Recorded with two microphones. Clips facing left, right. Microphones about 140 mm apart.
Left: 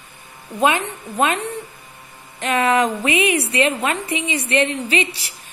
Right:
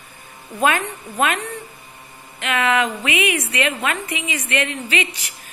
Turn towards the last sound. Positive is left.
turn(degrees=35)  # may be behind; listen again after turning